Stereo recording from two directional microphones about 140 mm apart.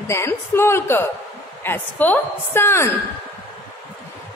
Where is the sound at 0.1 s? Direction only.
20° left (ahead or behind).